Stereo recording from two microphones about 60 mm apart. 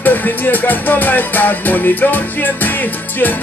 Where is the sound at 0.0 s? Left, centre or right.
Left.